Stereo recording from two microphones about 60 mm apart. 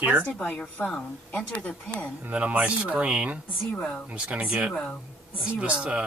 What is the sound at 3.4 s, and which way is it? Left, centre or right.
Speech, centre.